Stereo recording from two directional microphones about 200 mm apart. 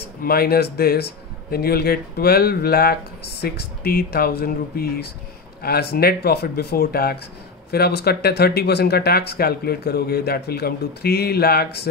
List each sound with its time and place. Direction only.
0.2 s speech: 50° left (ahead or behind)